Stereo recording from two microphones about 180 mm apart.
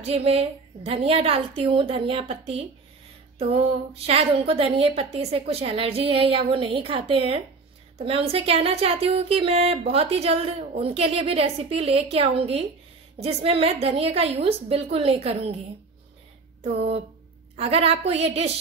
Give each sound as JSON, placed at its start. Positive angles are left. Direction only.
{"t": 0.0, "sound": "speech", "side_deg": -35}
{"t": 17.6, "sound": "speech", "side_deg": -35}